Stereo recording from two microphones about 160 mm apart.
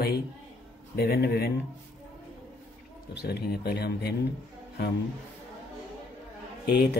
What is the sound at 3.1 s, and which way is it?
Speech, 90° left.